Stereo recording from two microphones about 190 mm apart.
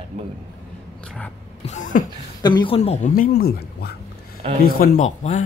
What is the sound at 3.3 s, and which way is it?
Speech, 55° left (ahead or behind).